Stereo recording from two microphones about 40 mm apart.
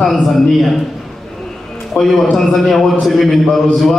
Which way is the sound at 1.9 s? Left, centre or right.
Left.